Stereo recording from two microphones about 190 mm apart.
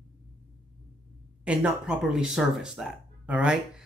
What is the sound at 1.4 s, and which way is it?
Speech, 5° right (ahead or behind).